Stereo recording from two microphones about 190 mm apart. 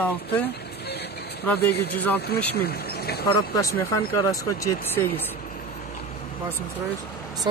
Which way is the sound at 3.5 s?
15° left (ahead or behind).